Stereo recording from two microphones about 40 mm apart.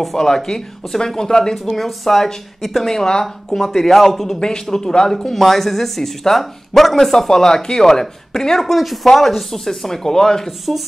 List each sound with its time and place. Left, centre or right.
0.0 s speech: centre